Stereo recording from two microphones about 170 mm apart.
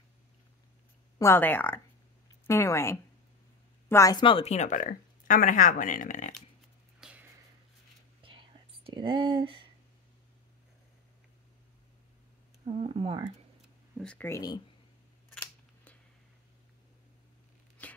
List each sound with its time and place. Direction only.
1.1 s speech: 15° left (ahead or behind); by 6.3 s 45° left (ahead or behind)
7.0 s a sound: 5° right (ahead or behind)
8.2 s whispering: 30° right (ahead or behind)
12.6 s speech: 30° right (ahead or behind)
13.6 s a sound: centre (ahead or behind)
14.1 s speech: 10° left (ahead or behind)